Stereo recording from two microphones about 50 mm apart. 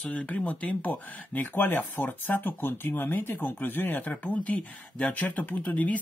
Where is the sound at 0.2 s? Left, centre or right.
Left.